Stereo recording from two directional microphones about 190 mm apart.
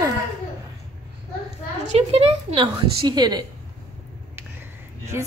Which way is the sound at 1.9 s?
35° right (ahead or behind).